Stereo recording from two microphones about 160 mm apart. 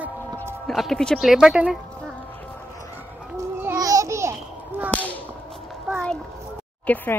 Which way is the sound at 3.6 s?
20° right (ahead or behind).